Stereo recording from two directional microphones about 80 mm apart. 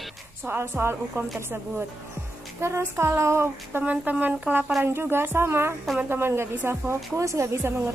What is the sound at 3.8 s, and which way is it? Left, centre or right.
A woman's voice, centre.